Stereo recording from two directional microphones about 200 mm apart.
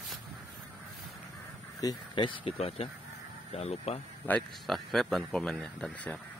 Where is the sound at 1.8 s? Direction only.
25° left (ahead or behind).